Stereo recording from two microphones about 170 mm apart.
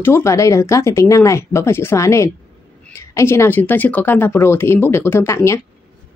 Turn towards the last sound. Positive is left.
turn(degrees=15)  # may be behind; listen again after turning